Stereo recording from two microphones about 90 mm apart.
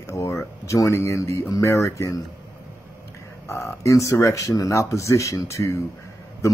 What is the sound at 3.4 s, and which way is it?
Speech, 30° left (ahead or behind).